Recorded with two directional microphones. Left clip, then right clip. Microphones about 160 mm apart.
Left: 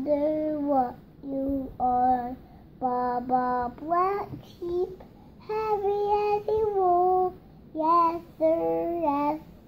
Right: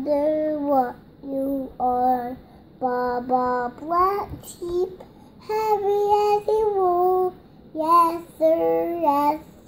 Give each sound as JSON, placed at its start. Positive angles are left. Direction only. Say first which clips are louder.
{"t": 0.0, "sound": "child singing", "louder": "right 4 dB", "side_deg": -10}